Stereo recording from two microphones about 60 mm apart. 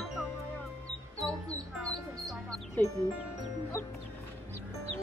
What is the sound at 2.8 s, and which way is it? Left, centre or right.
Speech, left.